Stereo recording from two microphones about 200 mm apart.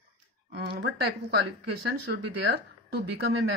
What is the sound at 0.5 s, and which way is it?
Speech, 50° right (ahead or behind).